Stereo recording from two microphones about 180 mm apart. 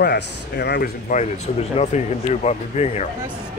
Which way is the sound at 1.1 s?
45° left (ahead or behind).